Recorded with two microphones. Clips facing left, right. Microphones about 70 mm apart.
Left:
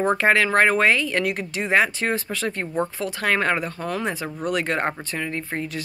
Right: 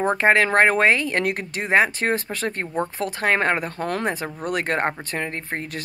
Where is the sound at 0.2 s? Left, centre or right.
Right.